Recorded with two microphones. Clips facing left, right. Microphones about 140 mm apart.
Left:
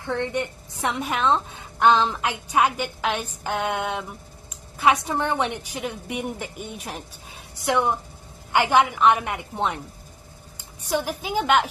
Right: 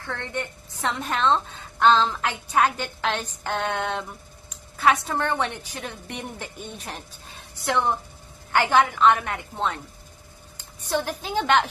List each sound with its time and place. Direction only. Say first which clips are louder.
0.0 s a woman's voice: left 6 dB; 15° left (ahead or behind)